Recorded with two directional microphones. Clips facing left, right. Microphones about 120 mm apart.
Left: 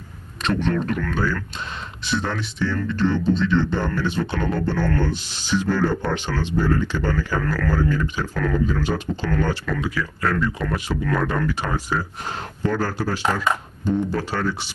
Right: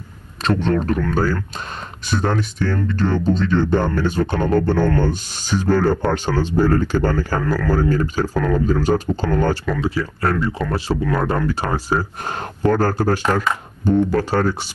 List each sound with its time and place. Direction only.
0.4 s a man's voice: 35° right (ahead or behind)
7.4 s speech: 10° right (ahead or behind)
7.7 s speech: 40° right (ahead or behind)